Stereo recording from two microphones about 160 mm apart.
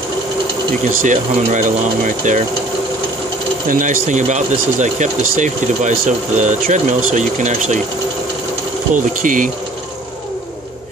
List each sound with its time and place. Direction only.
1.0 s speech: 50° right (ahead or behind)
3.6 s speech: 55° right (ahead or behind)
8.9 s speech: 55° right (ahead or behind)